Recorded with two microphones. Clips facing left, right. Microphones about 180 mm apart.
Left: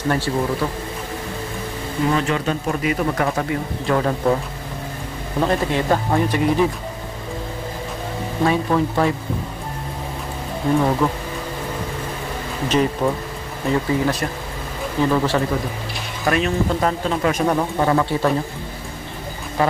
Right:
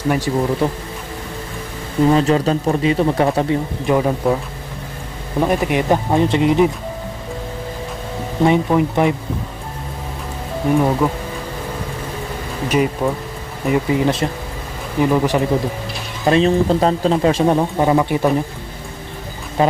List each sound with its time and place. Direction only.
0.1 s speech: 15° right (ahead or behind)
2.1 s speech: 35° right (ahead or behind)
3.8 s speech: 15° right (ahead or behind)
5.4 s speech: 15° right (ahead or behind)
8.4 s speech: 15° right (ahead or behind)
10.7 s speech: 10° right (ahead or behind)
12.6 s speech: 10° right (ahead or behind)
16.3 s speech: 30° right (ahead or behind)
19.6 s speech: 20° right (ahead or behind)